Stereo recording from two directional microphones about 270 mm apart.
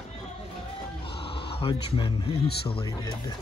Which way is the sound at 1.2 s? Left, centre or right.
Centre.